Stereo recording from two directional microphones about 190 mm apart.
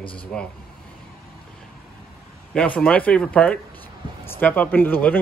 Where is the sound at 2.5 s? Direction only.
5° left (ahead or behind).